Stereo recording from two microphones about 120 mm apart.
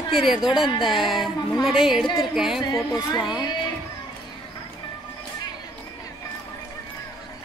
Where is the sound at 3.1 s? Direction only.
35° left (ahead or behind).